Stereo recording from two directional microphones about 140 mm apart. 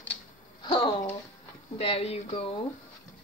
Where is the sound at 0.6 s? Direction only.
35° left (ahead or behind).